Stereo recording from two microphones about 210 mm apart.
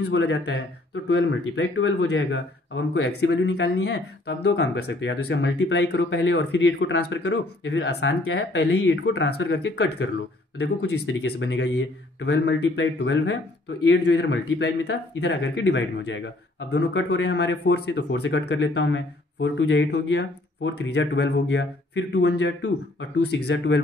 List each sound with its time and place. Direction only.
0.0 s speech: 55° left (ahead or behind)